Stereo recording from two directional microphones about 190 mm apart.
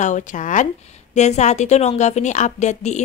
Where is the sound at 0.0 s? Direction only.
40° left (ahead or behind).